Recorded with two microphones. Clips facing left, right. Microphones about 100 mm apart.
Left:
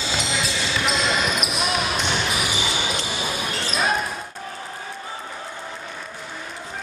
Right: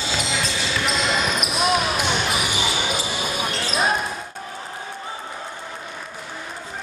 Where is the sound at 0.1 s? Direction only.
Centre (ahead or behind).